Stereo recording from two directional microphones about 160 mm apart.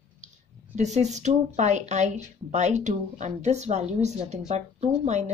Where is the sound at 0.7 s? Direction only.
45° right (ahead or behind).